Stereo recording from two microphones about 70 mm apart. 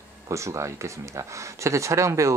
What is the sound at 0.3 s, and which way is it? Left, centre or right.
Speech, right.